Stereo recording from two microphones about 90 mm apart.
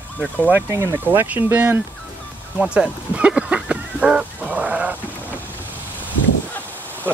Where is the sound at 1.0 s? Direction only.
20° right (ahead or behind).